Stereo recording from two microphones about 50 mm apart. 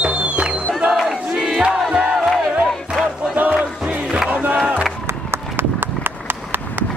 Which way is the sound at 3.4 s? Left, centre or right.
Right.